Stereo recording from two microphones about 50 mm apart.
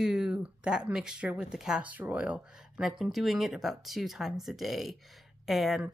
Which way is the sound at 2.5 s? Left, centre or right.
Centre.